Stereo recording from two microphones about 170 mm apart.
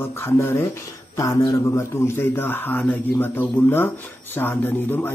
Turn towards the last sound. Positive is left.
turn(degrees=10)  # may be behind; listen again after turning